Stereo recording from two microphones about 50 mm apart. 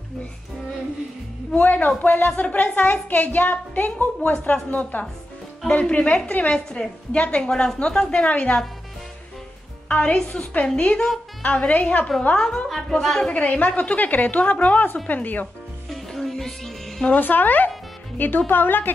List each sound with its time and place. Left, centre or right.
1.5 s a woman's voice: left
5.7 s a woman's voice: left
9.8 s a woman's voice: left
10.4 s a woman's voice: left
12.4 s a woman's voice: centre
13.3 s a woman's voice: left
15.0 s a woman's voice: left
15.9 s music: centre
17.0 s a woman's voice: left